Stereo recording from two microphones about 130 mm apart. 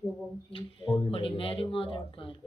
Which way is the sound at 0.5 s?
40° left (ahead or behind).